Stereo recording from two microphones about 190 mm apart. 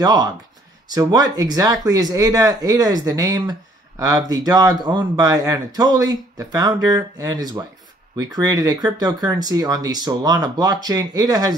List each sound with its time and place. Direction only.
0.0 s speech: 20° right (ahead or behind)